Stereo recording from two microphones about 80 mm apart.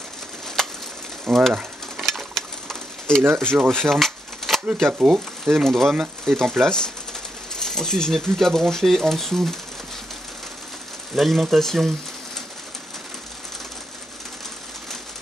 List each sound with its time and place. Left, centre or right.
1.3 s speech: centre
2.0 s sewing machine: centre
3.3 s speech: right
3.7 s a sound: centre
4.9 s speech: centre
5.5 s speech: centre
11.1 s speech: centre